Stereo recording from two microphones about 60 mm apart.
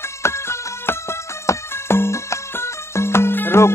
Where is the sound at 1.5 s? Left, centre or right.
Left.